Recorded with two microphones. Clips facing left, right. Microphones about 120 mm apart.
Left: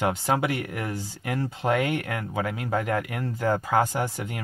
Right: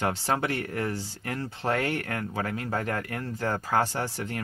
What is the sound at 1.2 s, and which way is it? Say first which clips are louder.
Speech: left 5 dB; 20° left (ahead or behind).